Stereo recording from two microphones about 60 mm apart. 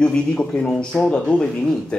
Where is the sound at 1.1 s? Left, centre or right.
Centre.